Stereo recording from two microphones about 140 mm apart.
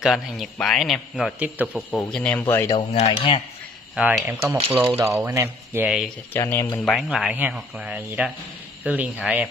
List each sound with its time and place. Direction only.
0.0 s a man's voice: centre (ahead or behind)
1.4 s speech: 10° right (ahead or behind)
1.8 s a man's voice: 5° left (ahead or behind)
2.4 s speech: 20° left (ahead or behind)
2.9 s speech: 50° left (ahead or behind)
3.9 s speech: 15° right (ahead or behind)
6.3 s speech: 20° left (ahead or behind)
6.8 s a man's voice: centre (ahead or behind)